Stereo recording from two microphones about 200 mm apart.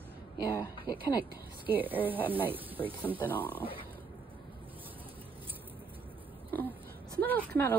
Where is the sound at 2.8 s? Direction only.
20° left (ahead or behind).